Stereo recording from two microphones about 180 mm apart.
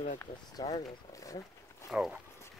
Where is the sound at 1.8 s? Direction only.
5° right (ahead or behind).